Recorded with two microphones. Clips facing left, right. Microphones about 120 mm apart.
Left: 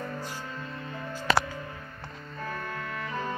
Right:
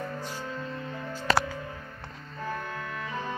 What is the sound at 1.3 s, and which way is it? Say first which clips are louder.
Music: even; 35° right (ahead or behind).